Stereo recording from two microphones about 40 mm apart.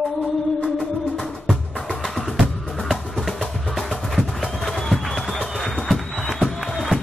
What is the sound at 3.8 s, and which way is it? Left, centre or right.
Music, centre.